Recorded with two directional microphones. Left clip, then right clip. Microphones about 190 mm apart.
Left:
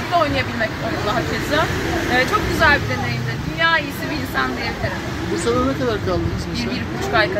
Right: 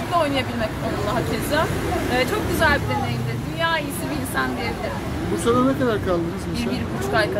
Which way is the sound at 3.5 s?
10° right (ahead or behind).